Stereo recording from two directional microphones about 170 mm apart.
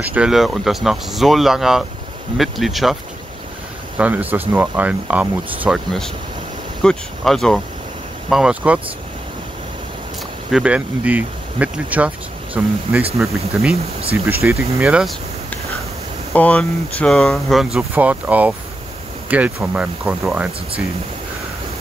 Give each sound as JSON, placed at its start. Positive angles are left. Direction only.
{"t": 0.1, "sound": "speech", "side_deg": -5}
{"t": 4.0, "sound": "speech", "side_deg": -10}
{"t": 6.8, "sound": "speech", "side_deg": 5}
{"t": 10.5, "sound": "speech", "side_deg": -5}
{"t": 14.4, "sound": "speech", "side_deg": -15}
{"t": 14.8, "sound": "speech", "side_deg": -5}
{"t": 16.3, "sound": "speech", "side_deg": 10}